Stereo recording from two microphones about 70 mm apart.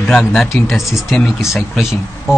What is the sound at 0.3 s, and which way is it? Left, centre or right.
A man's voice, centre.